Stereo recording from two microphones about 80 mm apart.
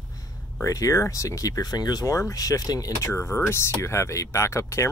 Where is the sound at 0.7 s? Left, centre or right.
Left.